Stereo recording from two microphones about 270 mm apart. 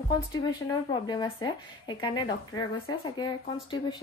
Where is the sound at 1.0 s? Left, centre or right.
Centre.